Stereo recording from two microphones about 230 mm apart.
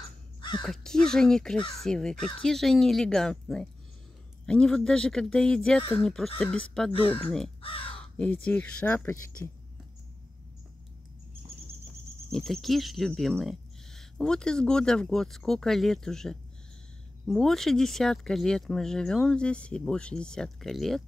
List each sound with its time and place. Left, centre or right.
0.4 s crow: centre
0.7 s speech: centre
6.9 s speech: left
7.2 s speech: centre
7.6 s crow: left
8.2 s speech: centre
12.3 s speech: centre